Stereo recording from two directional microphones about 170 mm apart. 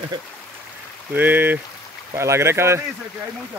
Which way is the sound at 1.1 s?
10° right (ahead or behind).